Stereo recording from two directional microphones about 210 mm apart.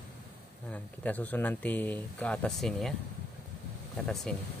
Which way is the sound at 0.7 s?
10° left (ahead or behind).